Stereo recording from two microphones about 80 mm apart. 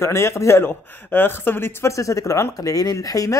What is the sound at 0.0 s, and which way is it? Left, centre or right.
Speech, left.